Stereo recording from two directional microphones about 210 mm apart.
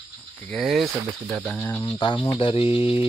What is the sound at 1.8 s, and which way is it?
Speech, 20° left (ahead or behind).